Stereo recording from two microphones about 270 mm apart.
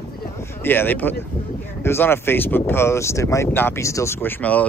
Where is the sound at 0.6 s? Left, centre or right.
Centre.